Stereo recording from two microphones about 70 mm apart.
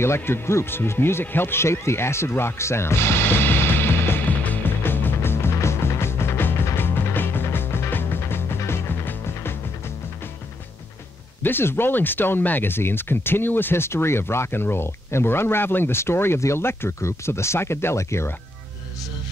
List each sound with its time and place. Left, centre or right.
0.0 s music: left
11.4 s speech: left